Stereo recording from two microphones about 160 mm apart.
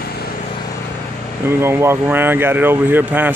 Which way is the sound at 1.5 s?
15° right (ahead or behind).